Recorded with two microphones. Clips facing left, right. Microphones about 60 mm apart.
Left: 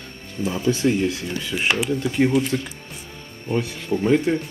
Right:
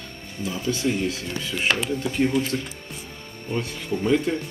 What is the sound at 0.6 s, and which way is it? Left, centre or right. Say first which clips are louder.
Speech: left 4 dB; left.